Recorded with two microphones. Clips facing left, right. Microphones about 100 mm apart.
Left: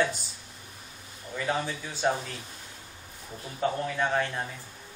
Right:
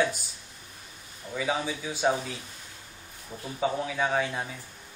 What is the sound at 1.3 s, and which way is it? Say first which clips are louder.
Speech: right 1 dB; 5° right (ahead or behind).